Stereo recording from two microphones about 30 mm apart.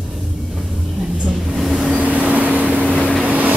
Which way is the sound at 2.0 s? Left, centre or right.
Right.